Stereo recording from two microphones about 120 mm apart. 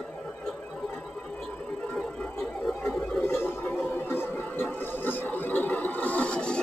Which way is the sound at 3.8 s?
15° left (ahead or behind).